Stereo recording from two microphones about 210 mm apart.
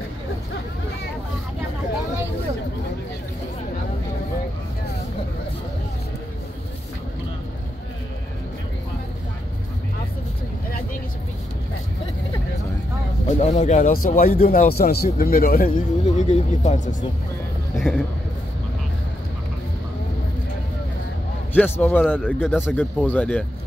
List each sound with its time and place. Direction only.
13.3 s speech: 35° left (ahead or behind)
17.7 s a sound: centre (ahead or behind)
21.5 s a man's voice: 10° left (ahead or behind)